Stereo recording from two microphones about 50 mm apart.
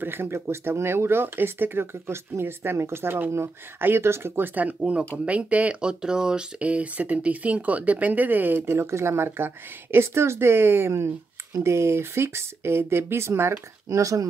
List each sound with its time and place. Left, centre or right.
0.0 s speech: right
4.4 s speech: right
8.6 s speech: right